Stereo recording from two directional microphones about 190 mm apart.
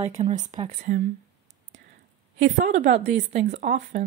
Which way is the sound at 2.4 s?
40° right (ahead or behind).